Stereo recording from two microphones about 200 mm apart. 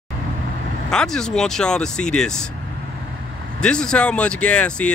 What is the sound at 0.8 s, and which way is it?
Speech, 5° left (ahead or behind).